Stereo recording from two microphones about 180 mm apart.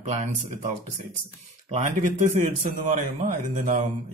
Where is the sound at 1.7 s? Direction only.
45° right (ahead or behind).